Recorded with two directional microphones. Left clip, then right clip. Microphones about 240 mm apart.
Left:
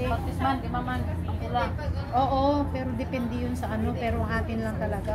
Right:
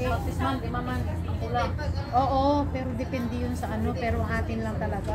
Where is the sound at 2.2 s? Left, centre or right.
Centre.